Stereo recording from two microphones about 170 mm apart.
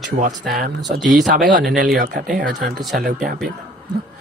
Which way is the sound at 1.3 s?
60° right (ahead or behind).